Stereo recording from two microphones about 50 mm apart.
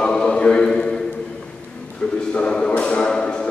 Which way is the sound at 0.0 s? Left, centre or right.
Centre.